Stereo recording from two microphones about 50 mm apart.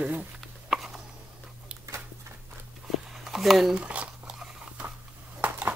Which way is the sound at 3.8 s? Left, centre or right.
Right.